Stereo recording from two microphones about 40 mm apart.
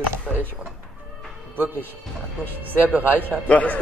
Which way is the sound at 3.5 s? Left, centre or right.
Left.